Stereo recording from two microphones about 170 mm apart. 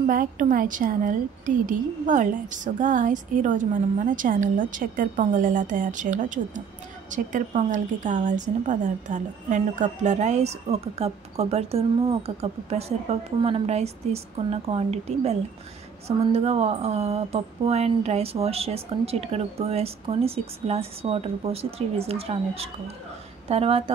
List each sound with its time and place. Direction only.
0.0 s a woman's voice: 55° right (ahead or behind); by 23.8 s 35° right (ahead or behind)